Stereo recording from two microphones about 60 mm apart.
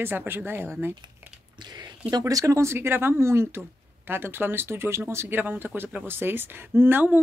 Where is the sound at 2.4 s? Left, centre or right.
Right.